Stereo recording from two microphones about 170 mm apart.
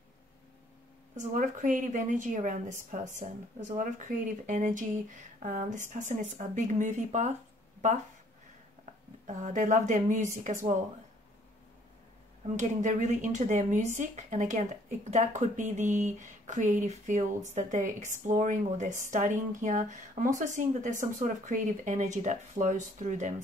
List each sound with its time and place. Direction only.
1.1 s speech: 45° right (ahead or behind)
9.2 s speech: 45° right (ahead or behind)
12.5 s speech: 45° right (ahead or behind)